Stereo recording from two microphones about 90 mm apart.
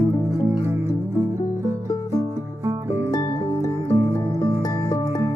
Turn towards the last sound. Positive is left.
turn(degrees=45)  # may be behind; listen again after turning